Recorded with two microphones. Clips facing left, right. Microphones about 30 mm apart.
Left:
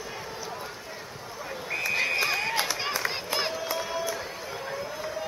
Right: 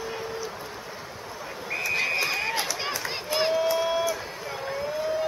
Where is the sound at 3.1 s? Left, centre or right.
Centre.